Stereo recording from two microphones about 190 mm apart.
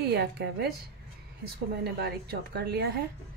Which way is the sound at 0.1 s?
60° right (ahead or behind).